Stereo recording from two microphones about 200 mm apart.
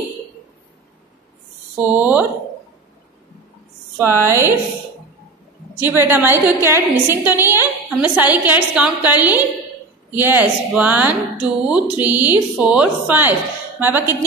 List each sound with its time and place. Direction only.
1.8 s a woman's voice: 10° right (ahead or behind)
4.0 s a woman's voice: 10° right (ahead or behind)
5.8 s a woman's voice: 10° right (ahead or behind)